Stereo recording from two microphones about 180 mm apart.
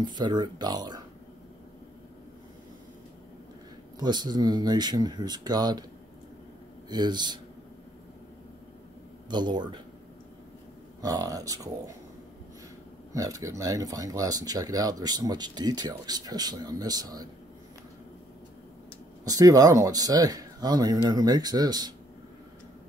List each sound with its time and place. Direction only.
0.0 s speech: 25° right (ahead or behind)
4.0 s speech: 25° right (ahead or behind)
6.9 s speech: 25° right (ahead or behind)
9.3 s speech: 25° right (ahead or behind)
11.0 s speech: 20° right (ahead or behind)
13.1 s speech: 20° right (ahead or behind)
19.2 s speech: 20° right (ahead or behind)